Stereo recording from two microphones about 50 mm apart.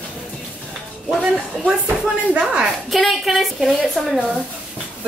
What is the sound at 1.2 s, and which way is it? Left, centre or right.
A woman's voice, right.